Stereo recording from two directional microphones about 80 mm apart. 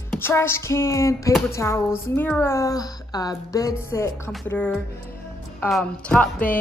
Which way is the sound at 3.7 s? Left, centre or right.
Left.